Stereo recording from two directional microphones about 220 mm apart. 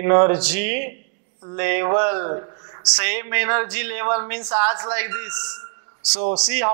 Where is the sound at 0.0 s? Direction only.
15° right (ahead or behind).